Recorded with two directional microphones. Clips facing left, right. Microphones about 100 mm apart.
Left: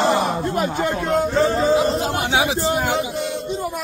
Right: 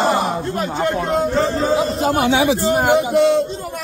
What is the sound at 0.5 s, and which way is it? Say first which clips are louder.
Speech: left 1 dB; 10° left (ahead or behind).